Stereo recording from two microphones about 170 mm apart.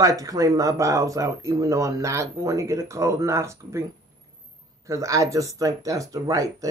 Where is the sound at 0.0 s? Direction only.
20° right (ahead or behind).